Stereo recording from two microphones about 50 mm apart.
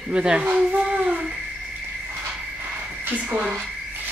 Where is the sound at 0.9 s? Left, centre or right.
Right.